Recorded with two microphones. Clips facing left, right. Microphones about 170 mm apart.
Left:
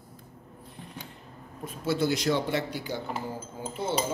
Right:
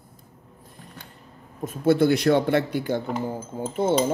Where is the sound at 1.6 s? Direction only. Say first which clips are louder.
Right 8 dB; 50° right (ahead or behind).